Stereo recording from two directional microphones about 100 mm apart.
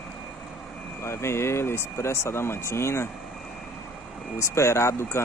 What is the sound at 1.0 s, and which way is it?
Speech, 25° left (ahead or behind).